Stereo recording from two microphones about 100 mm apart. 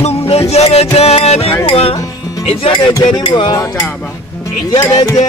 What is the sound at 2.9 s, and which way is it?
Music, 40° left (ahead or behind).